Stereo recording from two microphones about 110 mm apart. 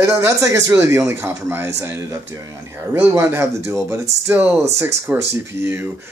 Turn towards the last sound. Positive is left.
turn(degrees=-20)  # may be behind; listen again after turning